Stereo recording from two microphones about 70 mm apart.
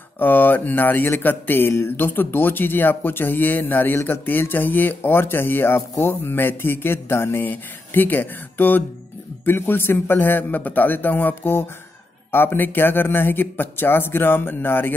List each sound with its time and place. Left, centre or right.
0.2 s speech: left